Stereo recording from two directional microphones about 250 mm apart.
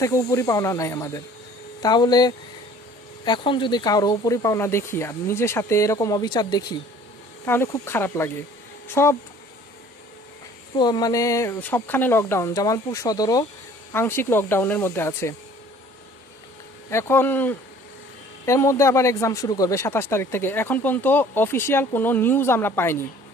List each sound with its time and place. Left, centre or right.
0.0 s speech: centre
10.8 s speech: centre
16.9 s speech: centre